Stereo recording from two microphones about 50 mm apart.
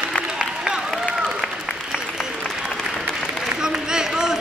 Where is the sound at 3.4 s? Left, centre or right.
Centre.